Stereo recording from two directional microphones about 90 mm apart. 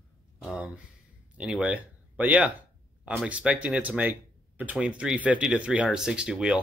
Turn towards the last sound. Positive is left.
turn(degrees=-10)  # may be behind; listen again after turning